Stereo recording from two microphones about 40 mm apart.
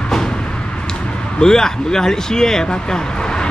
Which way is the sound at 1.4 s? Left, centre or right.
Centre.